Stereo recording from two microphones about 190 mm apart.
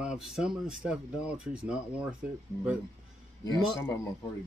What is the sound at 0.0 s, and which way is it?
Speech, 5° right (ahead or behind).